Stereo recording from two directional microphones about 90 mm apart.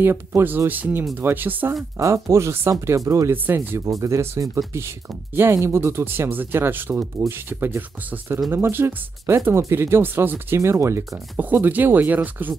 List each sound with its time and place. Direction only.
0.0 s speech: 25° right (ahead or behind)
2.0 s speech: 35° right (ahead or behind); by 12.5 s 20° right (ahead or behind)